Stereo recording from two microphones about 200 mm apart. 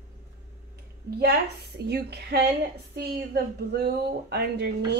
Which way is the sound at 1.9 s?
55° right (ahead or behind).